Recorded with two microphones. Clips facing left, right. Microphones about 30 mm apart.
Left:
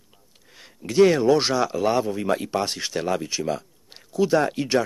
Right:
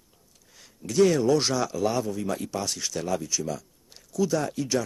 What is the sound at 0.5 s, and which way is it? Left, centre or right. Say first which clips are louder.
Speech: left 3 dB; left.